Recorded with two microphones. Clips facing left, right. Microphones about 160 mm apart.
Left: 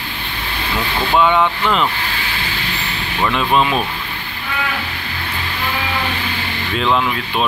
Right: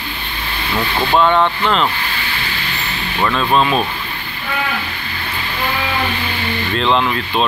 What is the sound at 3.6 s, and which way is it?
Speech, 20° right (ahead or behind).